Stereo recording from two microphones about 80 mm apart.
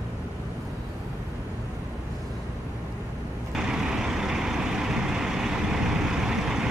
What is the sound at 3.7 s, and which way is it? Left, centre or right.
Vehicle, centre.